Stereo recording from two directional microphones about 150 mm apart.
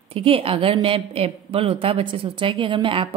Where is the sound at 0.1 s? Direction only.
40° right (ahead or behind).